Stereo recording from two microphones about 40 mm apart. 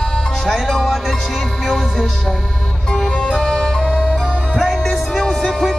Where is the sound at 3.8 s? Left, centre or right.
Left.